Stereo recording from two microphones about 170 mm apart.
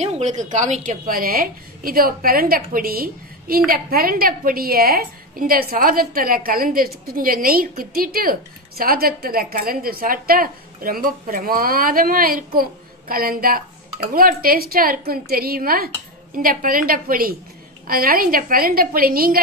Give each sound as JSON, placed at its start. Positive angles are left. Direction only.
{"t": 0.0, "sound": "a woman's voice", "side_deg": -40}